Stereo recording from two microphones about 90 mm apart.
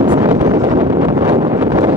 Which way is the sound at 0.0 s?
45° right (ahead or behind).